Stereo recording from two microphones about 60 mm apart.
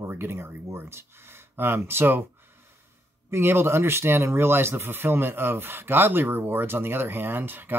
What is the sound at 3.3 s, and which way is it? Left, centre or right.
Speech, right.